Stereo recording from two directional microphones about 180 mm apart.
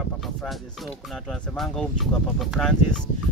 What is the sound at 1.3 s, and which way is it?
Speech, centre (ahead or behind).